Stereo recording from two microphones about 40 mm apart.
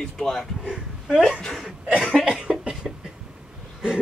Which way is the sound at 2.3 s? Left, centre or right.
Right.